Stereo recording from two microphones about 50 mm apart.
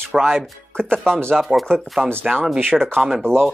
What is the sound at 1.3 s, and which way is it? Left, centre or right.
Speech, centre.